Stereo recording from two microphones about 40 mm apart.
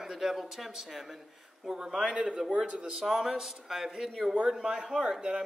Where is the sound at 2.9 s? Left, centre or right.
Centre.